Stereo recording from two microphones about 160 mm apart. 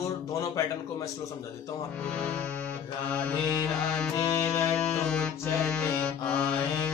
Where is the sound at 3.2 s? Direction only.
5° left (ahead or behind).